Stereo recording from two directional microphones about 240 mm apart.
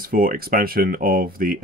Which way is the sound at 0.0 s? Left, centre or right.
Right.